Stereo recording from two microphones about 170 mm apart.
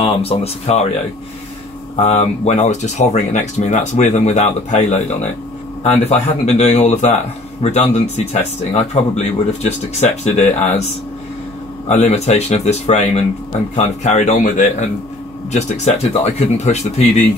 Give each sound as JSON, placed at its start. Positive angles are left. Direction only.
{"t": 0.0, "sound": "speech", "side_deg": 35}
{"t": 2.0, "sound": "speech", "side_deg": 40}
{"t": 11.9, "sound": "speech", "side_deg": 40}